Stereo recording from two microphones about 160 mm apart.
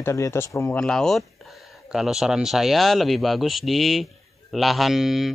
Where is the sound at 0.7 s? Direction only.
5° left (ahead or behind).